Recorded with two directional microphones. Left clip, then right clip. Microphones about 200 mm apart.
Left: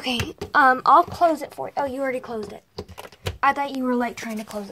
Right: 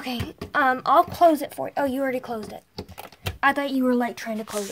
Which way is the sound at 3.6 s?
20° right (ahead or behind).